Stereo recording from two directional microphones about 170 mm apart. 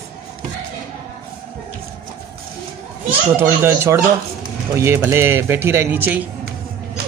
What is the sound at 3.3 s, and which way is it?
Speech, 15° right (ahead or behind).